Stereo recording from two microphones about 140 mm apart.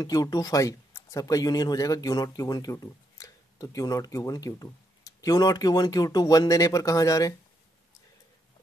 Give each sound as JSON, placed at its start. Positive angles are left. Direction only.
{"t": 0.0, "sound": "speech", "side_deg": 30}